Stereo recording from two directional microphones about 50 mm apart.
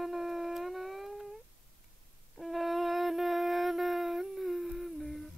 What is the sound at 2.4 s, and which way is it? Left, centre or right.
Shofar, centre.